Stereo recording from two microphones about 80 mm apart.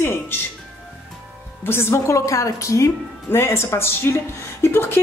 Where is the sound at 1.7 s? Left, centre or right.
Left.